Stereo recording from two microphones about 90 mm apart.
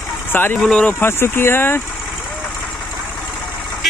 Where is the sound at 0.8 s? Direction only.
25° left (ahead or behind).